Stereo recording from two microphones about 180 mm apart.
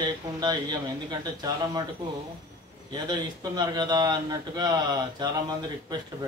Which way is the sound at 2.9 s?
20° right (ahead or behind).